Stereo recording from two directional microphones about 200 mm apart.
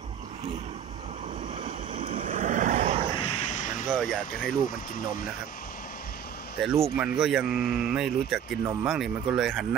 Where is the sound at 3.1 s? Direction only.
20° left (ahead or behind).